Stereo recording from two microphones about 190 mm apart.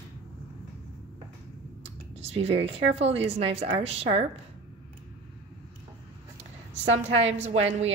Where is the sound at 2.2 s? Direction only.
30° right (ahead or behind).